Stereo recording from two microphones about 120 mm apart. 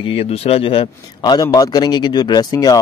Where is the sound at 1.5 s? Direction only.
30° left (ahead or behind).